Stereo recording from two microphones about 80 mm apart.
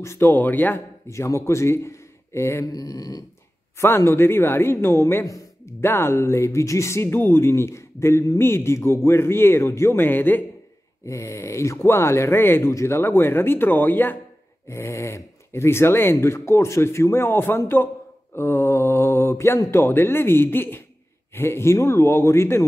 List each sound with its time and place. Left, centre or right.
0.0 s speech: left
0.4 s speech: left
0.7 s speech: left
2.7 s a sound: left
3.7 s speech: left
11.1 s speech: left
14.7 s speech: left